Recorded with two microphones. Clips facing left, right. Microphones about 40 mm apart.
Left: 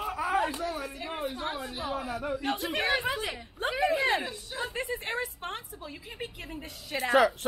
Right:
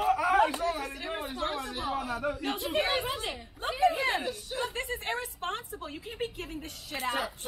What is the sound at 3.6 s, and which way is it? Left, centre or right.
Speech, left.